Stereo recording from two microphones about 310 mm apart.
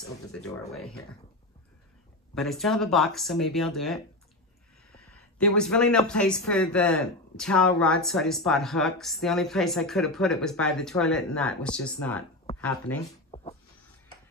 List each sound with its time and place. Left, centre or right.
0.3 s speech: centre
2.3 s speech: centre
13.3 s a sound: centre